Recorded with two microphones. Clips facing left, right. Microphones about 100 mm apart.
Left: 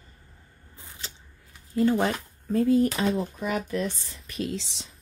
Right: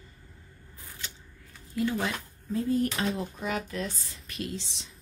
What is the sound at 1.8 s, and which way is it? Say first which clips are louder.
Speech: left 6 dB; 40° left (ahead or behind).